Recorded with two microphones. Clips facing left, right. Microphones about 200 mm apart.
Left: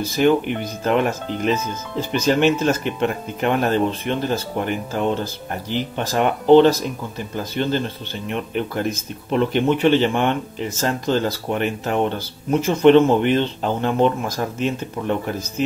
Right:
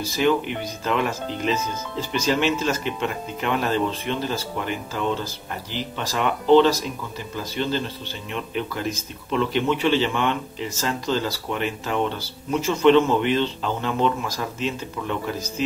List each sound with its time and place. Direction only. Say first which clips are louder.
0.5 s speech: left 5 dB; 50° left (ahead or behind)